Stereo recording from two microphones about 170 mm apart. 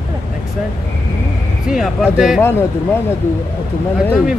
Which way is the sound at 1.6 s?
5° right (ahead or behind).